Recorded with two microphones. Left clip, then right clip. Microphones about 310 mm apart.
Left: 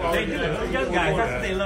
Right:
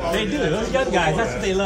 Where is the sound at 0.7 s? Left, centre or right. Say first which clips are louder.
Right 3 dB; centre.